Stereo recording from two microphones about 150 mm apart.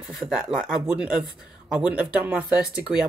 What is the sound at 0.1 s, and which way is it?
Speech, 5° right (ahead or behind).